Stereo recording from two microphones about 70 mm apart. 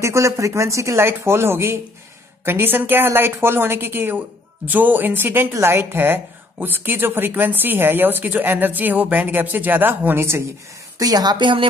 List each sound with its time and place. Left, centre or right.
0.0 s a woman's voice: right
11.0 s a woman's voice: right